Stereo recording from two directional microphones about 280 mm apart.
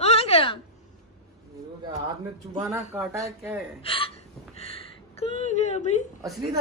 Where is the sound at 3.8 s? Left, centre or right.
Centre.